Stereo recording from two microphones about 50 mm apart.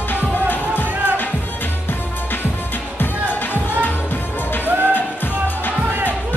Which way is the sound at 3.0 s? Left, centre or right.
Left.